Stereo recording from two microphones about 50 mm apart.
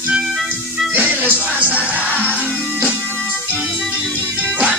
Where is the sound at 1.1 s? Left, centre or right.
Right.